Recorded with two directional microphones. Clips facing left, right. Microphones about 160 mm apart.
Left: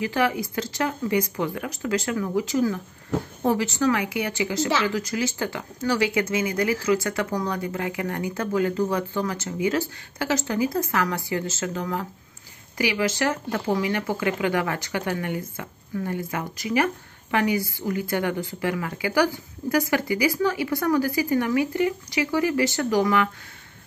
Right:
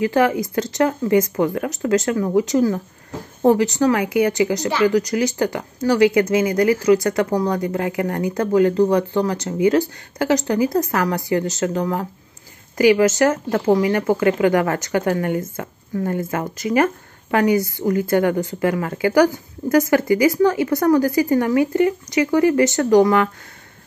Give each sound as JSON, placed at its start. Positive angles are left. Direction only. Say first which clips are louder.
{"t": 0.1, "sound": "speech", "louder": "right 6 dB", "side_deg": -45}
{"t": 3.8, "sound": "speech", "louder": "right 6 dB", "side_deg": -40}